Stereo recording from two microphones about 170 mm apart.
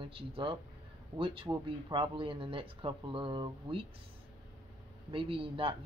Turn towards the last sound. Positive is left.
turn(degrees=-30)  # may be behind; listen again after turning